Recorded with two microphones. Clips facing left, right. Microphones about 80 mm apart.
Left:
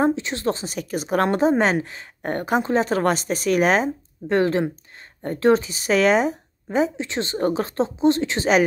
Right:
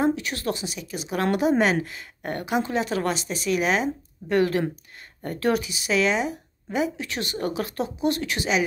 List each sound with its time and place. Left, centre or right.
0.0 s a woman's voice: left
0.7 s a woman's voice: left
4.3 s speech: left